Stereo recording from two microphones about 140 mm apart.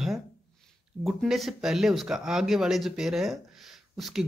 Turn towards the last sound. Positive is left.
turn(degrees=0)  # may be behind; listen again after turning